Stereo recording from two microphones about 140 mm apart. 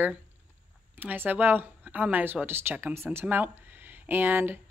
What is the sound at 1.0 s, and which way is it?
A woman's voice, 10° right (ahead or behind).